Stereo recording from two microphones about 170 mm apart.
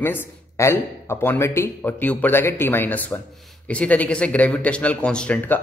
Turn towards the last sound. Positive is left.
turn(degrees=5)  # may be behind; listen again after turning